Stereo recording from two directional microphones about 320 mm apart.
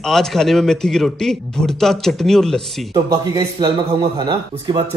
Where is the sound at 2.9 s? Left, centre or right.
Centre.